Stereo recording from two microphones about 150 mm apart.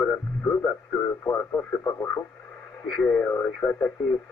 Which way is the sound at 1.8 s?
15° left (ahead or behind).